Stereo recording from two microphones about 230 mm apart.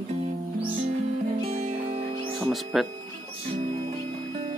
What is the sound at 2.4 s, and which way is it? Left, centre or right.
Music, centre.